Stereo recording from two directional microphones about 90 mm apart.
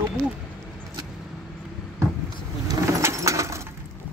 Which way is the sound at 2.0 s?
40° right (ahead or behind).